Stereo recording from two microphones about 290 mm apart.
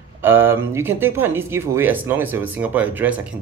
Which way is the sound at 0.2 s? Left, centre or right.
Centre.